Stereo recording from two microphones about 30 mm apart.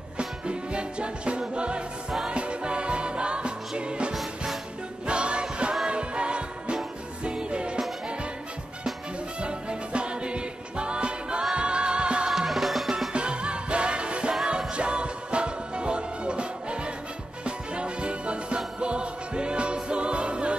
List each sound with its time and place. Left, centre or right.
0.2 s music: right
4.1 s music: centre
5.0 s music: right
9.4 s music: right
12.3 s music: centre
13.1 s music: right